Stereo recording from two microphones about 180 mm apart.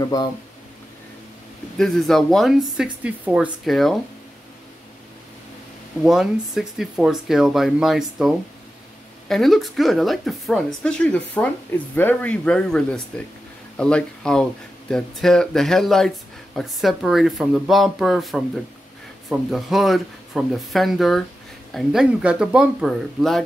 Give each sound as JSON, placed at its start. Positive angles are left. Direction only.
{"t": 0.0, "sound": "speech", "side_deg": 20}
{"t": 1.8, "sound": "speech", "side_deg": 0}
{"t": 6.0, "sound": "speech", "side_deg": -5}